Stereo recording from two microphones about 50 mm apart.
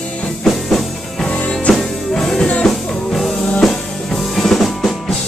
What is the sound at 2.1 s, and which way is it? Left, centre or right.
Music, centre.